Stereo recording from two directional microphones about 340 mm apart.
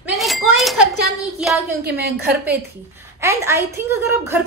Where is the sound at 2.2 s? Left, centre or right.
Centre.